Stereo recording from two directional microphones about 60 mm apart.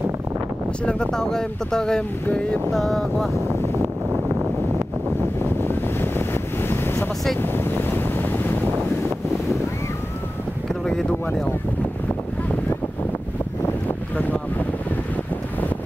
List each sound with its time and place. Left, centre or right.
0.8 s speech: centre
3.3 s wind noise: right
5.6 s wind noise: left
13.8 s boat: left